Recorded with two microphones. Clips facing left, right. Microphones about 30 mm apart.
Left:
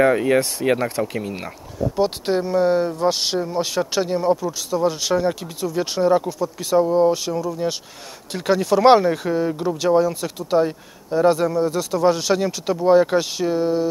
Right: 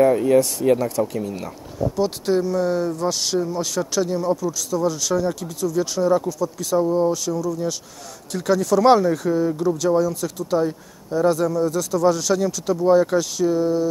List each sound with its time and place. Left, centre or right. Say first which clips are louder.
0.0 s speech: right 1 dB; left